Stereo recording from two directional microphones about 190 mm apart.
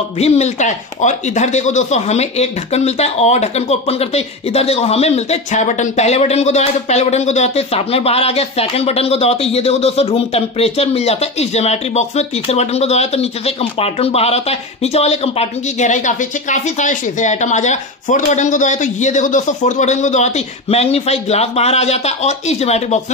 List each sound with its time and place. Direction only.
0.2 s speech: 35° left (ahead or behind)